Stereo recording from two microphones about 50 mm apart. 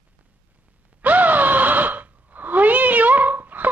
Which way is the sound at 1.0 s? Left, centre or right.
Right.